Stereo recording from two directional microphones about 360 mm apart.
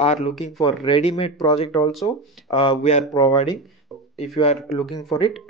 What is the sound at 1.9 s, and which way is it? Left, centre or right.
Speech, centre.